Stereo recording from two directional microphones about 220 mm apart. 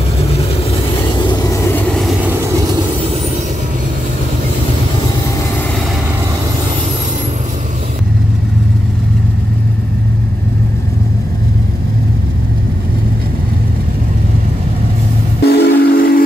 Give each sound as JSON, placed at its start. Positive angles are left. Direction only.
{"t": 0.3, "sound": "vehicle", "side_deg": 30}
{"t": 2.3, "sound": "train", "side_deg": -15}
{"t": 15.4, "sound": "train", "side_deg": 45}